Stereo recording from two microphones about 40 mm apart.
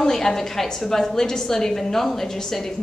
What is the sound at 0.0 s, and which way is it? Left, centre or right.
A woman's voice, centre.